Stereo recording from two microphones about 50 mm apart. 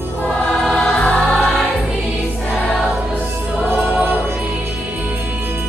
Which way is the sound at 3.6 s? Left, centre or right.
Right.